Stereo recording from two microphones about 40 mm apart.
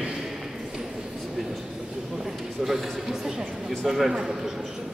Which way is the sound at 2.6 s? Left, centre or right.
Centre.